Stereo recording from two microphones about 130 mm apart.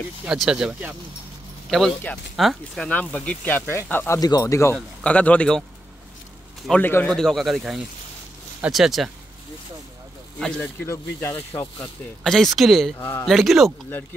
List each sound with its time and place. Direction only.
0.2 s speech: 5° right (ahead or behind)
1.7 s speech: 5° left (ahead or behind)
4.2 s speech: 30° left (ahead or behind)
4.7 s speech: 10° left (ahead or behind)
6.7 s speech: 15° left (ahead or behind)
7.2 s speech: centre (ahead or behind)
10.6 s speech: 20° left (ahead or behind)
12.2 s speech: 5° left (ahead or behind)
13.0 s speech: 15° left (ahead or behind)
13.3 s speech: centre (ahead or behind)